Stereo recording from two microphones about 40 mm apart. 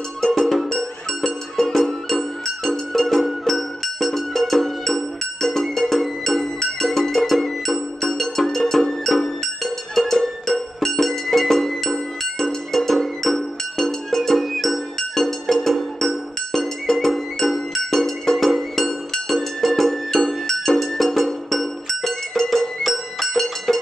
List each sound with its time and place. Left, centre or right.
0.2 s music: centre